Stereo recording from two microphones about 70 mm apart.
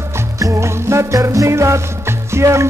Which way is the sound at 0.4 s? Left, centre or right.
Right.